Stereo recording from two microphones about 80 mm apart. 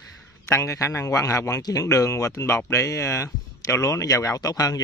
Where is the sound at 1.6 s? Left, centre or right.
Left.